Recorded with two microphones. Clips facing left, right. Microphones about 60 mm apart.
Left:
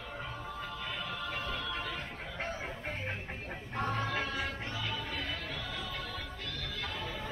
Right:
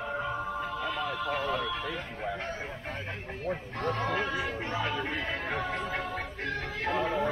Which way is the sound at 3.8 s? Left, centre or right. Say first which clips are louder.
Right 1 dB; centre.